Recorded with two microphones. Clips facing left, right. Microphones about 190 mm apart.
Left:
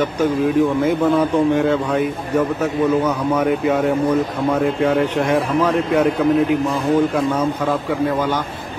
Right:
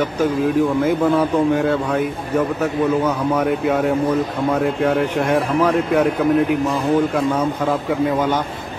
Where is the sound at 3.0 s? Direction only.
Centre (ahead or behind).